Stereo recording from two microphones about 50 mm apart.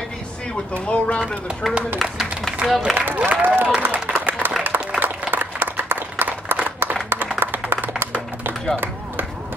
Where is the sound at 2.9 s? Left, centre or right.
Right.